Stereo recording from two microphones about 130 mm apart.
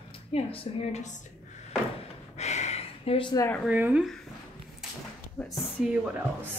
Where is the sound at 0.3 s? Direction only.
55° left (ahead or behind).